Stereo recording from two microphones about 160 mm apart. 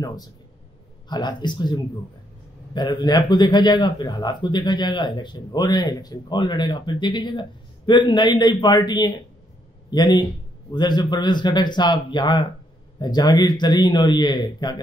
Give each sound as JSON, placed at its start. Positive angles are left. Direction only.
{"t": 0.0, "sound": "a man's voice", "side_deg": 25}